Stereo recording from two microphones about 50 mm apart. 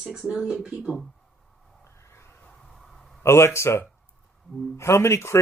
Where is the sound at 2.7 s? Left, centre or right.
Centre.